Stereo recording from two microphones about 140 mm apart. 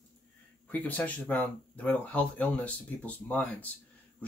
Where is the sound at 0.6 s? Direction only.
10° left (ahead or behind).